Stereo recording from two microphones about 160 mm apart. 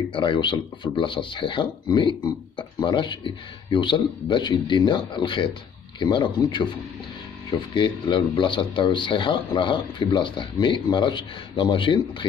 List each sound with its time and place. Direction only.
0.1 s a man's voice: 30° left (ahead or behind)